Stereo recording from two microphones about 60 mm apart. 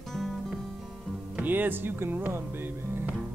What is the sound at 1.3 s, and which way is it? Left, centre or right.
Music, right.